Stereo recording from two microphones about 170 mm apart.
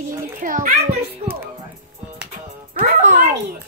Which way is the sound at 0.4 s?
50° right (ahead or behind).